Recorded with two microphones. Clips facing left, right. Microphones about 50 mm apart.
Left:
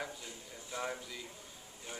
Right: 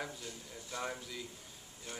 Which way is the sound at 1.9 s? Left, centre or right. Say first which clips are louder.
Even; centre.